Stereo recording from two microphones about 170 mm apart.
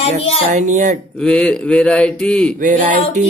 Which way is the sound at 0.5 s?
45° right (ahead or behind).